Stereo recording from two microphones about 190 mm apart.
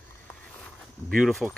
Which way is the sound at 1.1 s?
Centre (ahead or behind).